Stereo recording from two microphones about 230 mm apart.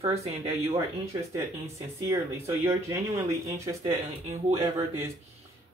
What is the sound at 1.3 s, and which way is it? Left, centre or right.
Speech, centre.